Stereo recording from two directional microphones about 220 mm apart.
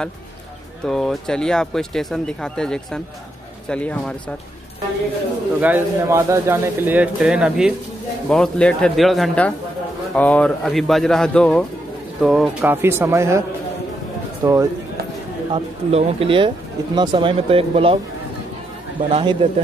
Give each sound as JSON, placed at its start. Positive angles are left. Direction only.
{"t": 0.8, "sound": "speech", "side_deg": 0}
{"t": 5.6, "sound": "speech", "side_deg": -10}
{"t": 14.4, "sound": "speech", "side_deg": -15}
{"t": 15.5, "sound": "speech", "side_deg": -25}
{"t": 19.0, "sound": "speech", "side_deg": -25}